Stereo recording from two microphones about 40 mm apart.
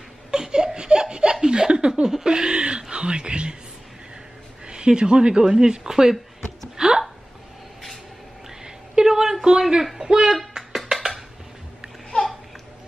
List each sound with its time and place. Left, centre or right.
0.3 s laughter: centre
2.5 s speech: right
4.6 s speech: right
6.8 s a sound: centre
8.5 s a sound: centre
10.8 s music: centre